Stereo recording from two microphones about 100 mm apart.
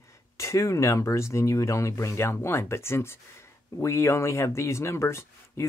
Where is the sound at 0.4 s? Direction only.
30° left (ahead or behind).